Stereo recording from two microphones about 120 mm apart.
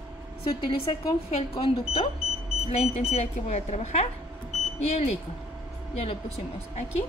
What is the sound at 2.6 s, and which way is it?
Speech, 65° left (ahead or behind).